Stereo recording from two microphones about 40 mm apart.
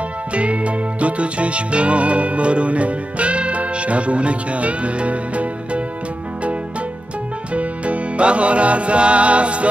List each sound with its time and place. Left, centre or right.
0.3 s music: right
7.5 s music: right